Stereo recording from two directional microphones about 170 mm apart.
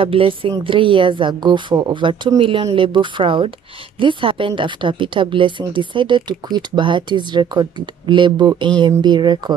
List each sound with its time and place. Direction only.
0.0 s a woman's voice: 30° right (ahead or behind)